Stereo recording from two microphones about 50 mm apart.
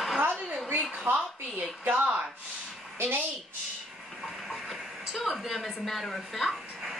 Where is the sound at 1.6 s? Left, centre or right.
Right.